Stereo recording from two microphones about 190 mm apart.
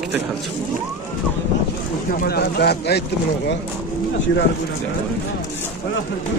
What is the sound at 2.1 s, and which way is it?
Speech, 50° left (ahead or behind).